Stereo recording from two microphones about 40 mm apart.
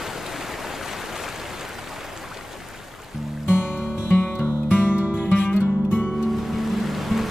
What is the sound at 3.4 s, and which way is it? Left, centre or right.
Music, left.